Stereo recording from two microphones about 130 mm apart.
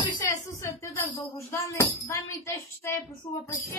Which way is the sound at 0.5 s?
25° left (ahead or behind).